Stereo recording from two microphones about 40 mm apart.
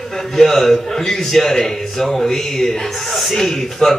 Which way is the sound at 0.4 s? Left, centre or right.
Centre.